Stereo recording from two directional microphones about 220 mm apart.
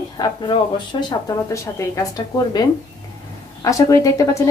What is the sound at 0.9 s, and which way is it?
Speech, 20° left (ahead or behind).